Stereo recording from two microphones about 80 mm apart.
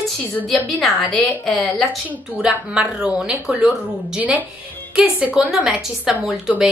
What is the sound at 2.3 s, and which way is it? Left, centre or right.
A woman's voice, centre.